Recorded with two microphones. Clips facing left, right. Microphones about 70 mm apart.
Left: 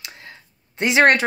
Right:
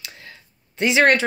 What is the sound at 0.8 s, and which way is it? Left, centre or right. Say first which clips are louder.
Speech: left 1 dB; left.